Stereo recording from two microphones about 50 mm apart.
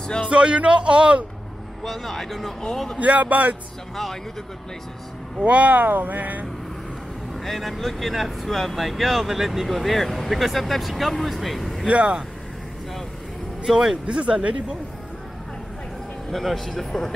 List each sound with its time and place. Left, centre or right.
0.3 s a man's voice: right
1.9 s speech: centre
3.0 s speech: right
3.9 s speech: centre
5.4 s speech: right
7.4 s speech: centre
11.9 s a man's voice: right
13.7 s speech: centre
14.0 s a man's voice: right
16.3 s speech: centre